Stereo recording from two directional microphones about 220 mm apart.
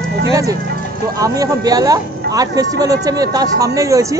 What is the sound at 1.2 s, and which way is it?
Speech, 15° right (ahead or behind).